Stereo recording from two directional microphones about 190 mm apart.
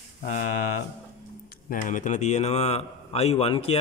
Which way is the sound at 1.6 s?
45° left (ahead or behind).